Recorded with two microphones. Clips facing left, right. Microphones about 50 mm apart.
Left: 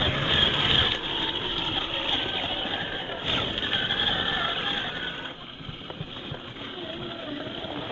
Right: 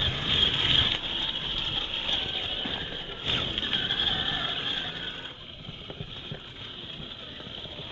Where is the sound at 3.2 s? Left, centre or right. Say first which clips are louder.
Left 1 dB; centre.